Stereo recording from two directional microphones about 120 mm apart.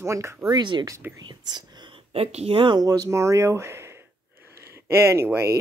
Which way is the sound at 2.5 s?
45° right (ahead or behind).